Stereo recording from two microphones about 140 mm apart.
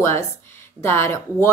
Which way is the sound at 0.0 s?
20° left (ahead or behind).